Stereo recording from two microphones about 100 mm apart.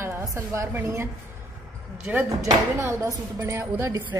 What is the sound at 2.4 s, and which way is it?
Speech, 30° right (ahead or behind).